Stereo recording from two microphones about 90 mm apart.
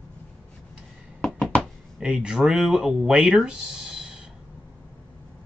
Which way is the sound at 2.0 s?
10° right (ahead or behind).